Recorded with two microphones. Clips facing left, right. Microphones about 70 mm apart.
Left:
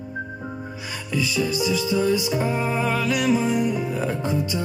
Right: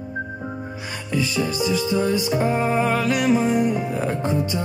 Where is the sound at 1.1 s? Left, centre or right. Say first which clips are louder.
Right 1 dB; right.